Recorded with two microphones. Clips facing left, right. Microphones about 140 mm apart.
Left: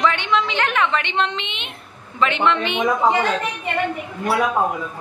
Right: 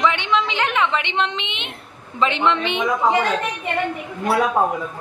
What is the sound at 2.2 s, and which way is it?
Speech, 30° right (ahead or behind).